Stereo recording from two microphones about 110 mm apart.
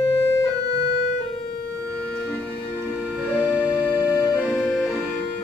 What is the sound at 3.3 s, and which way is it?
Music, 15° right (ahead or behind).